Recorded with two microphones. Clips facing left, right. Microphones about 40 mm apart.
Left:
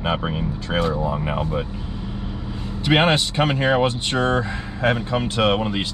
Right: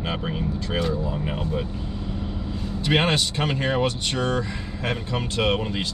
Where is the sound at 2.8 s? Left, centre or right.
Left.